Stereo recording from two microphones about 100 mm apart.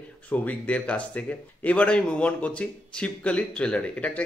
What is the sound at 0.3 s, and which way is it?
Speech, 15° left (ahead or behind).